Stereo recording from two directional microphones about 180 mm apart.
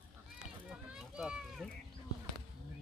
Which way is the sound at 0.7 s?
5° right (ahead or behind).